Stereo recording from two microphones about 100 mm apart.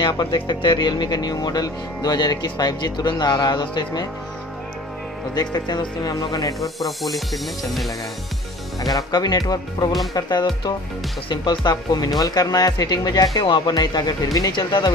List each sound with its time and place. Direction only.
0.0 s speech: 45° left (ahead or behind)
5.3 s speech: 40° left (ahead or behind)
6.6 s music: centre (ahead or behind)
8.8 s speech: 40° left (ahead or behind)